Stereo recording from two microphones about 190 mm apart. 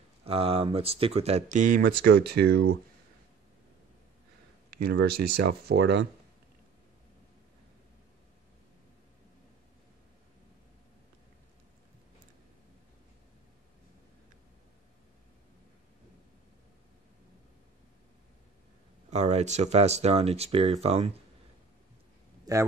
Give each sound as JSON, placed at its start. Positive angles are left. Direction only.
{"t": 0.2, "sound": "speech", "side_deg": -30}
{"t": 4.8, "sound": "speech", "side_deg": -60}
{"t": 19.0, "sound": "speech", "side_deg": -35}
{"t": 22.4, "sound": "a sound", "side_deg": -15}